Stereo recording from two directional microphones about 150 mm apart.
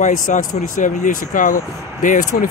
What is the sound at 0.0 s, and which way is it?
Speech, 60° left (ahead or behind).